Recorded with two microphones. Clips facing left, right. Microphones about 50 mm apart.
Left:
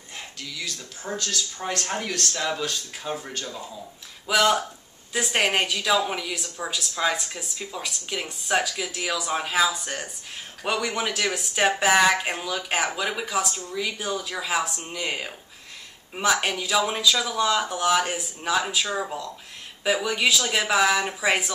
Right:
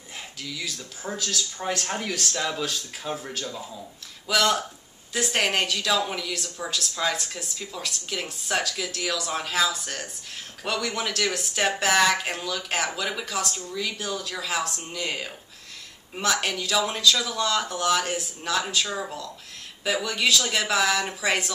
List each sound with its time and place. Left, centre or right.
0.4 s speech: centre